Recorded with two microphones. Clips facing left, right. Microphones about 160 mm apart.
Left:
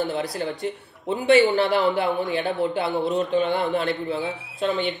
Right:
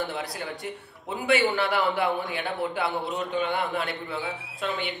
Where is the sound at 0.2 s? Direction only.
25° left (ahead or behind).